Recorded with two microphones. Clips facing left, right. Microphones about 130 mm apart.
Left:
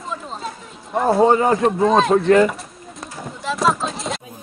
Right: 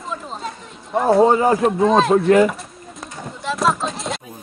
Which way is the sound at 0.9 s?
Centre (ahead or behind).